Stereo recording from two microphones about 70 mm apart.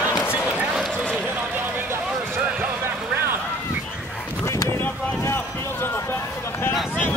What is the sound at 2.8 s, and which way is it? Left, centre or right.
Music, right.